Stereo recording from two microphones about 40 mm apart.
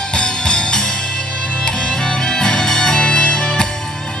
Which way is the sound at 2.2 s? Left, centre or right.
Centre.